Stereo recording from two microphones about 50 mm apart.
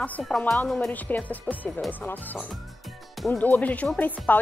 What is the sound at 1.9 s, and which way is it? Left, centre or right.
Speech, left.